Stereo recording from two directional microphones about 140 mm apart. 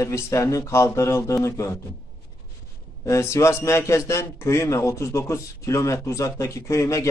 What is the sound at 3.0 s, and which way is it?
A man's voice, 20° left (ahead or behind).